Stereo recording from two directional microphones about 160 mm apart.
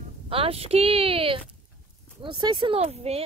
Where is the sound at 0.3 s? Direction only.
35° right (ahead or behind).